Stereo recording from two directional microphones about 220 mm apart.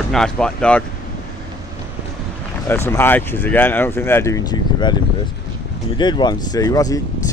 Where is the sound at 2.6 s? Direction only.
10° left (ahead or behind).